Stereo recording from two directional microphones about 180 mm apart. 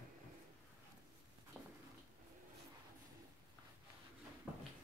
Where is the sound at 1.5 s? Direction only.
5° left (ahead or behind).